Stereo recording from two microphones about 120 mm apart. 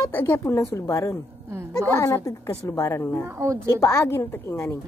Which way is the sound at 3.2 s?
20° right (ahead or behind).